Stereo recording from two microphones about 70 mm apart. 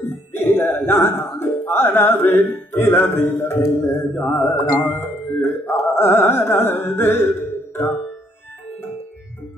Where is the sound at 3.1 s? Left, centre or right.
Left.